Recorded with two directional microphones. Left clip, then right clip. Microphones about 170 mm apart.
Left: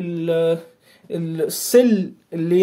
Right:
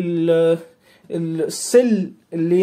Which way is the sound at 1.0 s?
Centre (ahead or behind).